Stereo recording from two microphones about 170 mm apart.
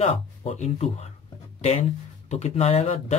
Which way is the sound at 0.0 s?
40° left (ahead or behind).